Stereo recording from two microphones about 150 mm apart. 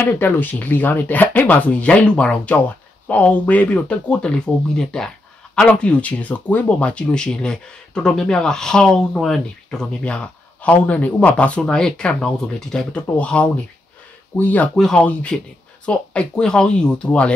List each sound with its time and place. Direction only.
0.0 s speech: 10° left (ahead or behind)